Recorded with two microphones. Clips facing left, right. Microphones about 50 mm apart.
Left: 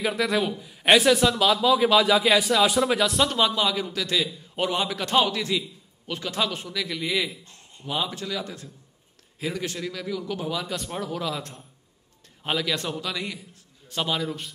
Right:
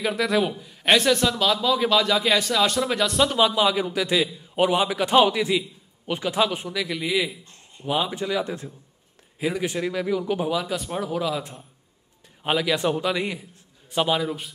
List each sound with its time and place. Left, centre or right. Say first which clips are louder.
0.0 s a man's voice: right 2 dB; centre
7.8 s a man's voice: right 4 dB; centre
9.4 s a man's voice: right 5 dB; centre
10.5 s a man's voice: right 4 dB; centre